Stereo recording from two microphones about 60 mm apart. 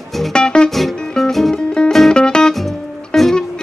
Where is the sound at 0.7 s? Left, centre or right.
Centre.